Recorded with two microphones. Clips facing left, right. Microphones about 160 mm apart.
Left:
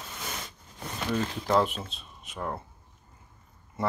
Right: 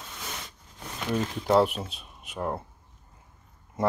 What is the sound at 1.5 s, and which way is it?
Speech, 5° right (ahead or behind).